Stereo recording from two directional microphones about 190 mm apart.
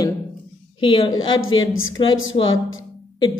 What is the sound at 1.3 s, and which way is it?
A woman's voice, 90° left.